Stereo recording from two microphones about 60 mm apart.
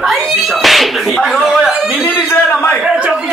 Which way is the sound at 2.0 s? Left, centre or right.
Left.